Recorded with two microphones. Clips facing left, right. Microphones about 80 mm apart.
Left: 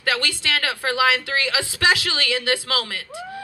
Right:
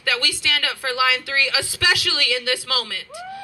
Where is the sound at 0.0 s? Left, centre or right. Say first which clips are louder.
Left 1 dB; left.